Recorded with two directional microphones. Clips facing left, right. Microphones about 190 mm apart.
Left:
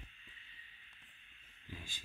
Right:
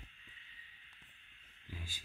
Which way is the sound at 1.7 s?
10° right (ahead or behind).